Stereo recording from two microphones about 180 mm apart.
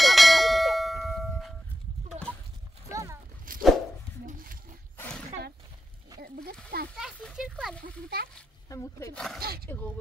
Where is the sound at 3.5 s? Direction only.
50° right (ahead or behind).